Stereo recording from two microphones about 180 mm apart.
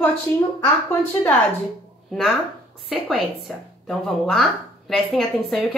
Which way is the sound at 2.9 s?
5° right (ahead or behind).